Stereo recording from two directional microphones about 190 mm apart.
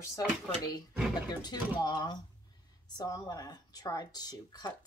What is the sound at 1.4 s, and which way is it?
Speech, 20° left (ahead or behind).